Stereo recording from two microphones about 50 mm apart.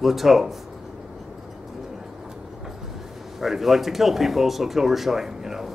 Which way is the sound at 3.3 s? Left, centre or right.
Centre.